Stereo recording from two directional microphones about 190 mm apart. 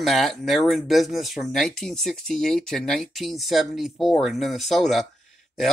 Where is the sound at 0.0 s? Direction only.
Centre (ahead or behind).